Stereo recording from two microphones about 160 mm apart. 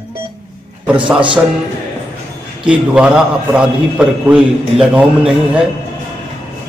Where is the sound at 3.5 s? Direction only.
5° right (ahead or behind).